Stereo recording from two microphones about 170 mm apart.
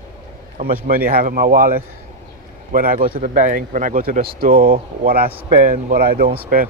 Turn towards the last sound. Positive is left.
turn(degrees=-55)  # may be behind; listen again after turning